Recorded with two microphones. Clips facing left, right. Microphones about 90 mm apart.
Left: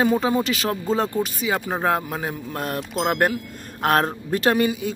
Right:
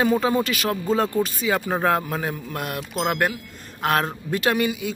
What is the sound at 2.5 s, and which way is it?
Speech, 35° left (ahead or behind).